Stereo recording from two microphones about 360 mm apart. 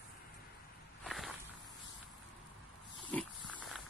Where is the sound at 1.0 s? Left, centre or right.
Centre.